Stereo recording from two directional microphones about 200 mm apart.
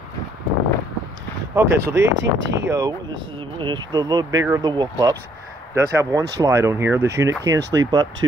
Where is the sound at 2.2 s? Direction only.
65° right (ahead or behind).